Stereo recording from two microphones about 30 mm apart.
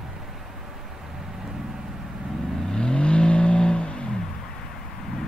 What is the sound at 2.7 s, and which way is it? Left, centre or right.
Vehicle, left.